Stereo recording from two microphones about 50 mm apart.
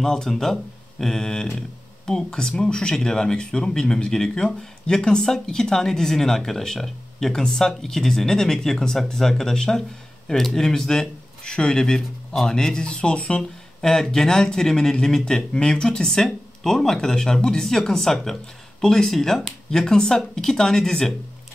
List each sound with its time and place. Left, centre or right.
0.0 s speech: centre
13.4 s speech: centre